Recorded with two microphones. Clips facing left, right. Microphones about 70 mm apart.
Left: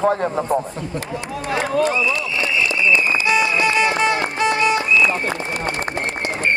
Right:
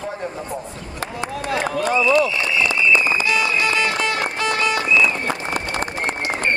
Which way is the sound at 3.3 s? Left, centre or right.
Left.